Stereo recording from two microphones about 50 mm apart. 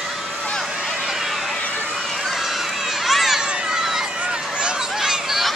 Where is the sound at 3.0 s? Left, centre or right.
Centre.